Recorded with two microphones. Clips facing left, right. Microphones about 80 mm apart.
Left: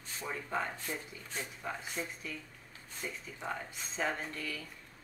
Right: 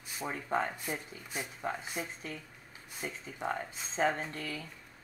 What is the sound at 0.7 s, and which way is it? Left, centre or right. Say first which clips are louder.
Speech: right 2 dB; centre.